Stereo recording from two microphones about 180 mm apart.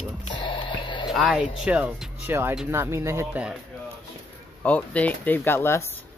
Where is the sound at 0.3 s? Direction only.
25° left (ahead or behind).